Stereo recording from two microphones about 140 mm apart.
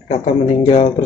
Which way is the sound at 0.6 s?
50° left (ahead or behind).